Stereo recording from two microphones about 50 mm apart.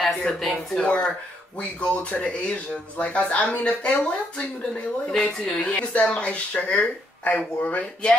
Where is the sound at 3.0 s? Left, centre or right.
Left.